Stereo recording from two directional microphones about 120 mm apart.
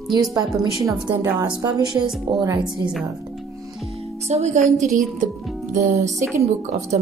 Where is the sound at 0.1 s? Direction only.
30° right (ahead or behind).